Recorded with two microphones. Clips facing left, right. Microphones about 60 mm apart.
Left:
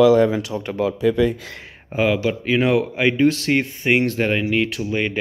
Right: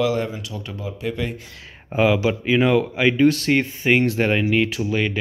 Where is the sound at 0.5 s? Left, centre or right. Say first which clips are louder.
Left 7 dB; left.